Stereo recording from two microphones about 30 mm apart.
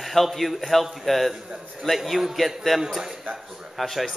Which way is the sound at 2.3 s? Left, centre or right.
Centre.